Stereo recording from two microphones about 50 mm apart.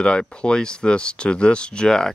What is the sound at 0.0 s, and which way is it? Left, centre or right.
Speech, centre.